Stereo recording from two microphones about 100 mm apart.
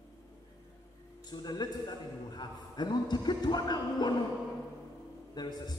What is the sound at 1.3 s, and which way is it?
A man's voice, 45° left (ahead or behind).